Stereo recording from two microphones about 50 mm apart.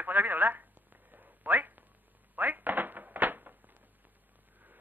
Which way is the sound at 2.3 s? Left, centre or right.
Right.